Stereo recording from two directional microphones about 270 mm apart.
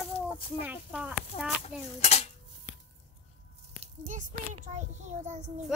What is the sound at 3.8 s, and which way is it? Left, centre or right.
A child's voice, right.